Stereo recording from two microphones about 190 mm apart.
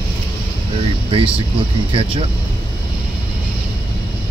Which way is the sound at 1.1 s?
30° right (ahead or behind).